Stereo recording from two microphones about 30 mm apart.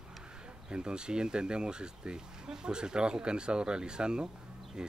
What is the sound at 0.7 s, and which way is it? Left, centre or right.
Speech, right.